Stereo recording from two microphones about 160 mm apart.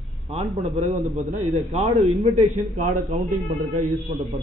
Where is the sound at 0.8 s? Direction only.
45° right (ahead or behind).